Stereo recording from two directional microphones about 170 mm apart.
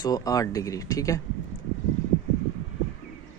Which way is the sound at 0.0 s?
20° left (ahead or behind).